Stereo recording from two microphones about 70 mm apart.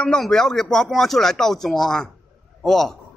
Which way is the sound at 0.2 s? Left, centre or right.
Centre.